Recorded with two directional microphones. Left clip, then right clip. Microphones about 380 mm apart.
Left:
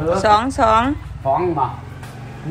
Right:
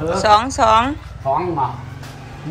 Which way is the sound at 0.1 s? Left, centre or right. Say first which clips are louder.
Right 1 dB; centre.